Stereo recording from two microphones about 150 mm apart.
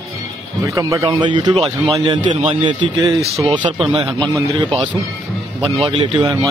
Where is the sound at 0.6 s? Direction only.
20° right (ahead or behind).